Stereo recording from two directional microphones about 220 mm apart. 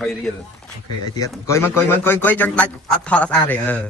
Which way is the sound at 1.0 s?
15° left (ahead or behind).